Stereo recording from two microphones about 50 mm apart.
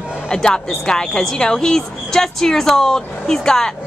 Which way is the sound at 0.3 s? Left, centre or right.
Centre.